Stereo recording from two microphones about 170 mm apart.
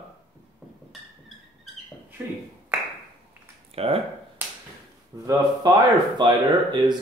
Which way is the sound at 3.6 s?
35° right (ahead or behind).